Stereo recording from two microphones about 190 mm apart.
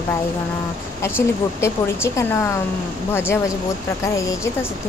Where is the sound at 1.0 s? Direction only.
15° left (ahead or behind).